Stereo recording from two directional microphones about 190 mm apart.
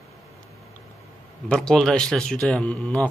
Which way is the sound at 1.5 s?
5° left (ahead or behind).